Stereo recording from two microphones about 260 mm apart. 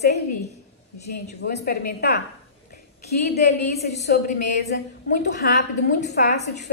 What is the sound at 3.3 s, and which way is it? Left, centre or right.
A woman's voice, left.